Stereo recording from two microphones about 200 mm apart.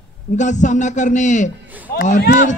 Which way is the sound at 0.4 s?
35° left (ahead or behind).